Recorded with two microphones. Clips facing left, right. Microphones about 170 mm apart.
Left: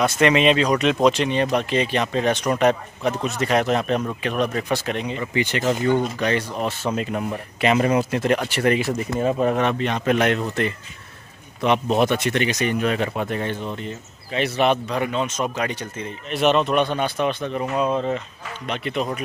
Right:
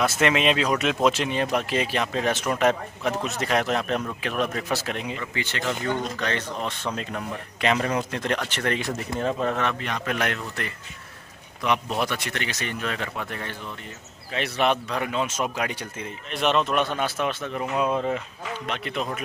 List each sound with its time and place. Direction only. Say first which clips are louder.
0.0 s speech: left 4 dB; 5° right (ahead or behind)
5.2 s speech: left 7 dB; 15° left (ahead or behind)
9.3 s speech: left 6 dB; 15° left (ahead or behind)
11.6 s speech: left 6 dB; 25° left (ahead or behind)
14.3 s speech: left 4 dB; centre (ahead or behind)
16.3 s speech: left 4 dB; centre (ahead or behind)